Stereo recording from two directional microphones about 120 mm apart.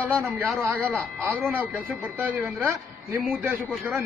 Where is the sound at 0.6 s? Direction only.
15° right (ahead or behind).